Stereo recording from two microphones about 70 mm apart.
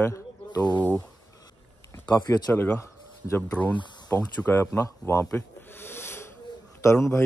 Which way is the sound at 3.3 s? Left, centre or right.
Left.